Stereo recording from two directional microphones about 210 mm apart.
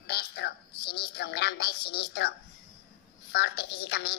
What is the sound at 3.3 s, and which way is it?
Speech, 50° left (ahead or behind).